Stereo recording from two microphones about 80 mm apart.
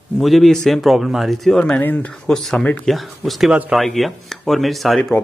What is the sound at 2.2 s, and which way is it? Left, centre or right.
Speech, centre.